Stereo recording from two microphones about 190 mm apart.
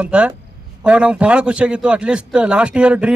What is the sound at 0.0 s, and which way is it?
Speech, 5° right (ahead or behind).